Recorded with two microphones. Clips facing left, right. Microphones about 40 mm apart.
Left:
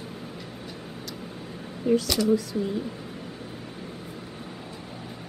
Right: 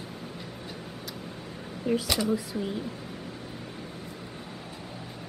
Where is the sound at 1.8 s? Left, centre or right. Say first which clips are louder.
Left 4 dB; centre.